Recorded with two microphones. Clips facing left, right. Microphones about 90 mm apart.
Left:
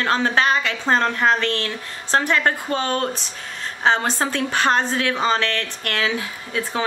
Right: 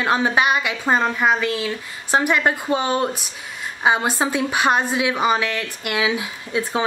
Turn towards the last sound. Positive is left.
turn(degrees=-15)  # may be behind; listen again after turning